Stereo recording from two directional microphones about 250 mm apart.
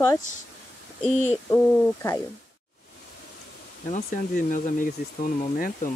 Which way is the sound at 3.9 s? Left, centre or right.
Left.